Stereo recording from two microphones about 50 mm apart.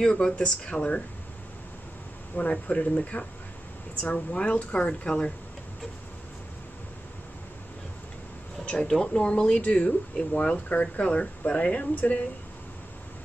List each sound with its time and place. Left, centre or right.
0.0 s speech: centre
2.3 s speech: left
2.8 s speech: left
8.6 s speech: centre; by 12.2 s left